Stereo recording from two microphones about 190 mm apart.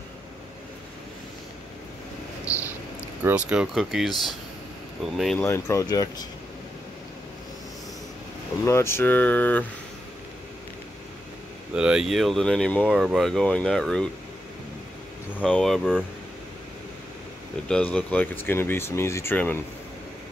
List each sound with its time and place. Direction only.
3.3 s speech: 5° right (ahead or behind)
5.4 s speech: 15° left (ahead or behind)
8.6 s speech: 15° left (ahead or behind)
11.7 s speech: 5° right (ahead or behind)
15.3 s speech: 5° left (ahead or behind)
17.6 s speech: 5° left (ahead or behind)